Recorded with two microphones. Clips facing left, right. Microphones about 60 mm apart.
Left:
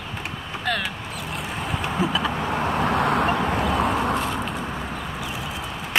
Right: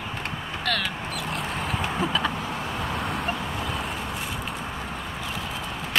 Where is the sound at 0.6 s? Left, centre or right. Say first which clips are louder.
Left 2 dB; centre.